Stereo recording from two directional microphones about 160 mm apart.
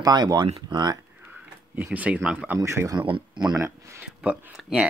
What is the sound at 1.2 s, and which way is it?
Speech, 10° right (ahead or behind).